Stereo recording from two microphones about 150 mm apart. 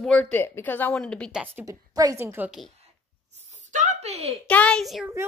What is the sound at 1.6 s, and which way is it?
Speech, 25° right (ahead or behind).